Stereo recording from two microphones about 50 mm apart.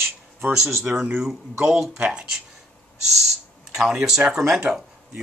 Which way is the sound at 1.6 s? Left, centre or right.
Centre.